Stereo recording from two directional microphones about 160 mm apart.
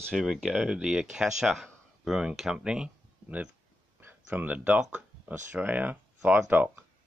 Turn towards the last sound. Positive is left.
turn(degrees=-10)  # may be behind; listen again after turning